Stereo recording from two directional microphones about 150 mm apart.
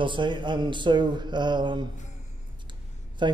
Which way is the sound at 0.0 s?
30° right (ahead or behind).